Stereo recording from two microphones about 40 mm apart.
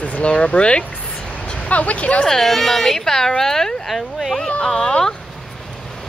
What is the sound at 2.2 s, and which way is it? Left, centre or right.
Speech, centre.